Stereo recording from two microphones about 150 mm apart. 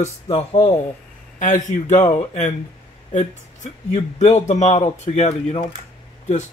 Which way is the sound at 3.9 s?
50° left (ahead or behind).